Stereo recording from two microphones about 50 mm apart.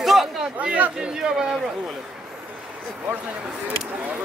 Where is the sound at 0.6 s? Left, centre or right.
Right.